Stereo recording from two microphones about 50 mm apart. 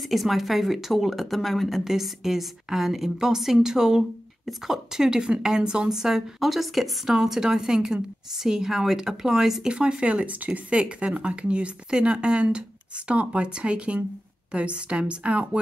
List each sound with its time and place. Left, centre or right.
0.1 s a woman's voice: centre
9.7 s speech: centre